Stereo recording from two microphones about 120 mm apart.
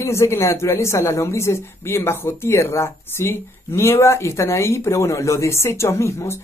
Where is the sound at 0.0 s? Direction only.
20° left (ahead or behind).